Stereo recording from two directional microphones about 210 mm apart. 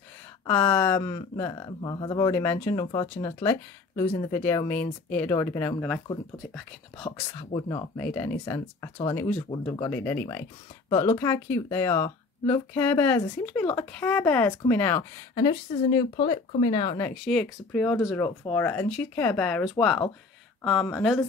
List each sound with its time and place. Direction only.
0.5 s speech: 5° left (ahead or behind)
7.1 s speech: 15° left (ahead or behind)
17.0 s speech: 5° left (ahead or behind)
20.9 s speech: centre (ahead or behind)